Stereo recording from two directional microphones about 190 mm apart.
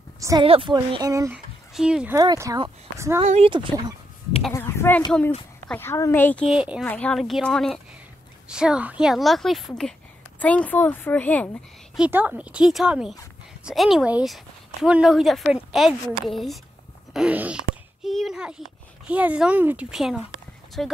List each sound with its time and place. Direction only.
0.2 s a woman's voice: 20° right (ahead or behind)
1.3 s speech: 5° right (ahead or behind)
2.1 s speech: 15° right (ahead or behind)
3.2 s speech: 30° right (ahead or behind)
4.6 s a sound: 15° left (ahead or behind)
5.7 s a woman's voice: 10° left (ahead or behind)
6.5 s a woman's voice: 5° right (ahead or behind)
12.0 s speech: 10° right (ahead or behind)